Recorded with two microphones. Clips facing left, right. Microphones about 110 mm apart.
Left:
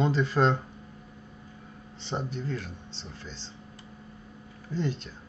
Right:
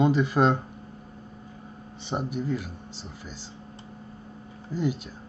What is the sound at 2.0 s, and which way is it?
Speech, 10° right (ahead or behind).